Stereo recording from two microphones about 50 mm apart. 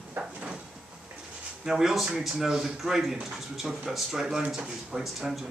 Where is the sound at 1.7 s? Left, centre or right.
Centre.